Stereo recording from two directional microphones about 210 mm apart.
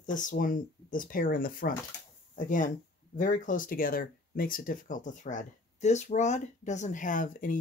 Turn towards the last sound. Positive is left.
turn(degrees=40)  # may be behind; listen again after turning